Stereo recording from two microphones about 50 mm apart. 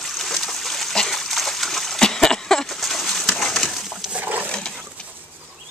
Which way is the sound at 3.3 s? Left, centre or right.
Centre.